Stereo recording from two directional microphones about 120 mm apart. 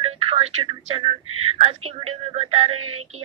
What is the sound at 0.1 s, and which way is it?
A woman's voice, 55° right (ahead or behind).